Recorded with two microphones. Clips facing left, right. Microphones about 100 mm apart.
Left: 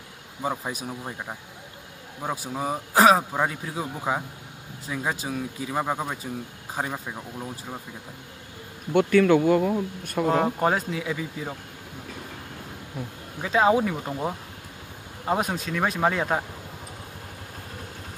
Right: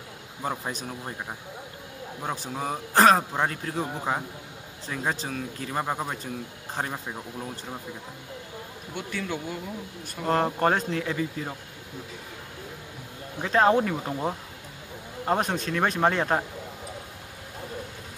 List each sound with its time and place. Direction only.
0.4 s a man's voice: 5° left (ahead or behind)
8.9 s speech: 65° left (ahead or behind)
10.2 s speech: 5° left (ahead or behind)
13.4 s speech: 5° left (ahead or behind)